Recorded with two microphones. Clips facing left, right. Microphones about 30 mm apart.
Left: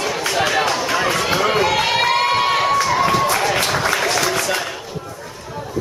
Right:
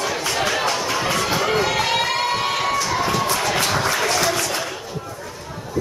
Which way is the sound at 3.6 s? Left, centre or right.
Centre.